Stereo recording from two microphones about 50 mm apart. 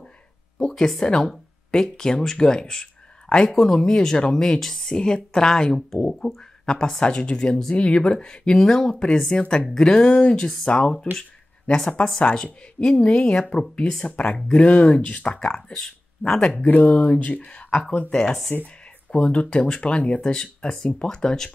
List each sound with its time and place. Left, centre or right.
0.6 s speech: centre
8.9 s speech: left
9.8 s speech: centre
12.1 s speech: centre
14.1 s speech: left
16.6 s speech: left
18.1 s speech: centre
19.1 s speech: left